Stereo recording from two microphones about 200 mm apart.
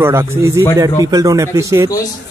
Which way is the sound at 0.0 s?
10° right (ahead or behind).